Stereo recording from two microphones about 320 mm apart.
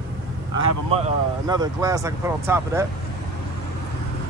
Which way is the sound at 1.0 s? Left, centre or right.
Centre.